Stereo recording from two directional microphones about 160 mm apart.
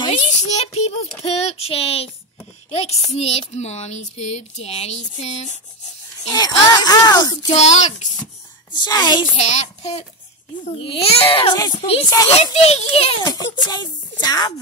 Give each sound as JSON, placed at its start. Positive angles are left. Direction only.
{"t": 0.3, "sound": "child singing", "side_deg": 45}
{"t": 3.2, "sound": "speech", "side_deg": 40}
{"t": 6.2, "sound": "speech", "side_deg": 25}
{"t": 7.5, "sound": "speech", "side_deg": 45}
{"t": 8.7, "sound": "speech", "side_deg": 25}
{"t": 9.4, "sound": "speech", "side_deg": 45}
{"t": 10.8, "sound": "child singing", "side_deg": 35}
{"t": 12.5, "sound": "child singing", "side_deg": 40}
{"t": 13.2, "sound": "speech", "side_deg": 25}